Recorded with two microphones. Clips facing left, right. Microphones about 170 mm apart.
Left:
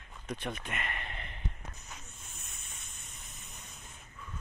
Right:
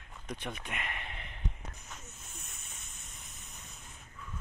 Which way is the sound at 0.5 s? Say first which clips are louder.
Left 1 dB; 5° right (ahead or behind).